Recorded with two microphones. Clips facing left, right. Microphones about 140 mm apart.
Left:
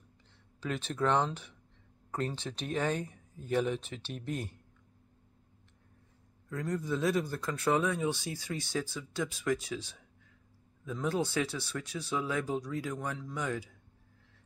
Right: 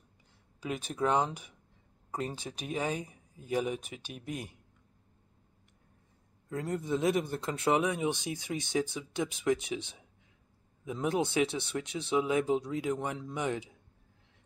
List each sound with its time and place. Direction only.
0.6 s speech: 10° right (ahead or behind)
6.5 s speech: 20° right (ahead or behind)